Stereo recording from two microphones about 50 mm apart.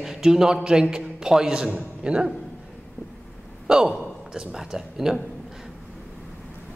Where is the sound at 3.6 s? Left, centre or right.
Centre.